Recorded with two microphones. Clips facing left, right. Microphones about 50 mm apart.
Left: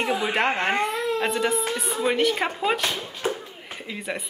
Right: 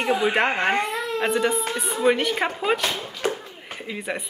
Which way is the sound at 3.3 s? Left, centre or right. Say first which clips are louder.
Right 1 dB; centre.